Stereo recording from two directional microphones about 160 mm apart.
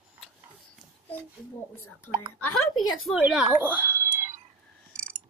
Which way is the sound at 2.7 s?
Centre (ahead or behind).